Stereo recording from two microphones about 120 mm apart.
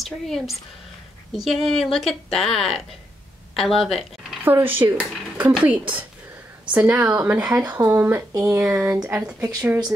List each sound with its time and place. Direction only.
0.0 s a woman's voice: centre (ahead or behind)
4.7 s speech: 15° right (ahead or behind)
8.7 s speech: 10° right (ahead or behind)
9.2 s speech: 25° right (ahead or behind)